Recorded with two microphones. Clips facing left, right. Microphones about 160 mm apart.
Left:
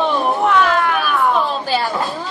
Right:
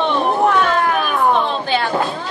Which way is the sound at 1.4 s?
5° left (ahead or behind).